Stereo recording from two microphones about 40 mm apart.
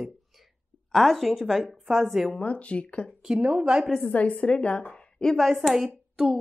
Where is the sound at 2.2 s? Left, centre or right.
Left.